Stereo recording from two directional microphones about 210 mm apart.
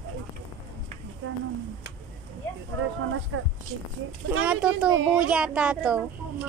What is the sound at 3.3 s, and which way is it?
Speech, 75° right (ahead or behind).